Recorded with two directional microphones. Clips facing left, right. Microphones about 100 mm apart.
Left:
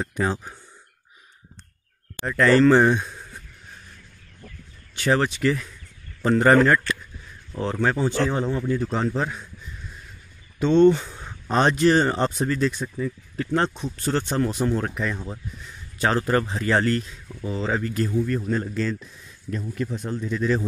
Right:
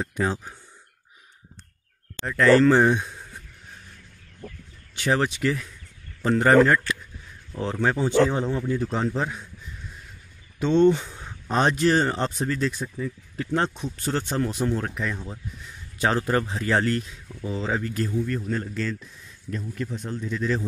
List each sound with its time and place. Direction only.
0.2 s speech: 5° left (ahead or behind)
2.2 s speech: centre (ahead or behind)
4.9 s speech: 10° right (ahead or behind)
10.6 s speech: 10° right (ahead or behind)
11.1 s a sound: 10° left (ahead or behind)
11.4 s speech: 5° right (ahead or behind)
15.1 s speech: 20° left (ahead or behind)
16.3 s speech: 5° right (ahead or behind)
17.3 s speech: 20° left (ahead or behind)
17.6 s speech: 5° right (ahead or behind)
18.1 s speech: 10° left (ahead or behind)
18.4 s speech: 25° left (ahead or behind)
20.0 s speech: 10° left (ahead or behind)